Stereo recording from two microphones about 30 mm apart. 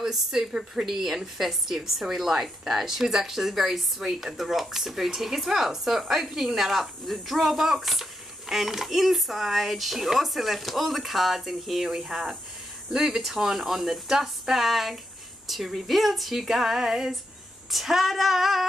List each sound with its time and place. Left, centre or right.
0.0 s a woman's voice: centre